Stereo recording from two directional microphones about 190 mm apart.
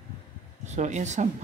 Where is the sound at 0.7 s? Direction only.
40° right (ahead or behind).